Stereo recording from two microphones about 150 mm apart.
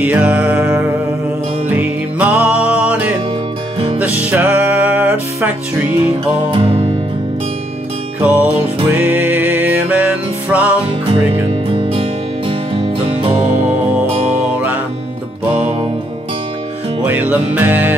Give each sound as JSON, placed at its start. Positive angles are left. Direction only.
{"t": 0.0, "sound": "music", "side_deg": -10}
{"t": 6.5, "sound": "music", "side_deg": -40}
{"t": 8.2, "sound": "music", "side_deg": -10}
{"t": 11.7, "sound": "music", "side_deg": -35}
{"t": 17.0, "sound": "music", "side_deg": -10}